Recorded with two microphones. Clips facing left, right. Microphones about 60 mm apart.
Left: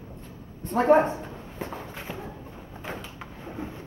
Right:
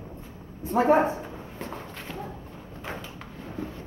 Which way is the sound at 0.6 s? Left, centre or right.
Centre.